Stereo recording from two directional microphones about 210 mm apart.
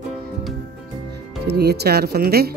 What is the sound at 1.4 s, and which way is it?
Speech, 50° right (ahead or behind).